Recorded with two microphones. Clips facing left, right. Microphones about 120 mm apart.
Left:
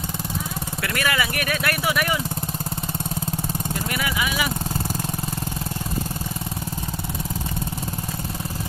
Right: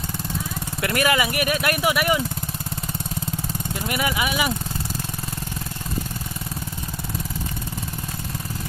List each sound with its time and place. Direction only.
0.8 s speech: 20° right (ahead or behind)
3.9 s speech: 20° right (ahead or behind)